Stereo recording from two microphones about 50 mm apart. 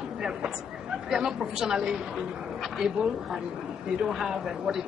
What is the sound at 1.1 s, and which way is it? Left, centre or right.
A woman's voice, centre.